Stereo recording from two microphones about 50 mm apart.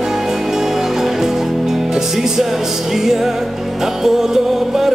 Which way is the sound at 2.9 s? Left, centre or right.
Centre.